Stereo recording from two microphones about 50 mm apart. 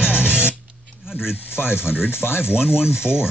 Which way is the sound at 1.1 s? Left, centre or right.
Centre.